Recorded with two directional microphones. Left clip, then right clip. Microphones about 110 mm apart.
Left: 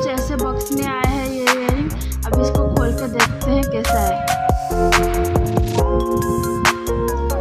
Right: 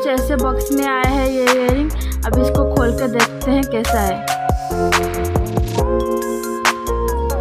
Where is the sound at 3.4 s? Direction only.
30° right (ahead or behind).